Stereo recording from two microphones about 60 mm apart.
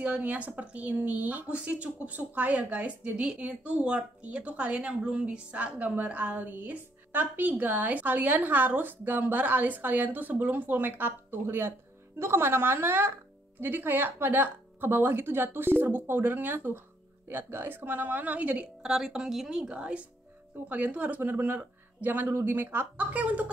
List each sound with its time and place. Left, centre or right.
0.0 s speech: right
18.8 s speech: centre; by 22.3 s right
22.3 s speech: right
22.9 s speech: right